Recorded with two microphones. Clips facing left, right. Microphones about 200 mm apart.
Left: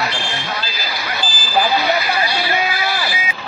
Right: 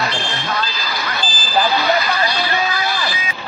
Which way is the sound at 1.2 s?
10° left (ahead or behind).